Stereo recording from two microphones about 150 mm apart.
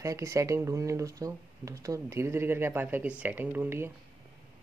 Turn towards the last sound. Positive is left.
turn(degrees=-15)  # may be behind; listen again after turning